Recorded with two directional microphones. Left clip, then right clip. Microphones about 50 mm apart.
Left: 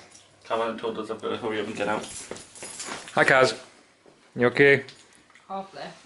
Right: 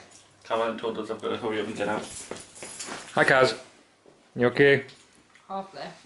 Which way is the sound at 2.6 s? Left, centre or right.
Centre.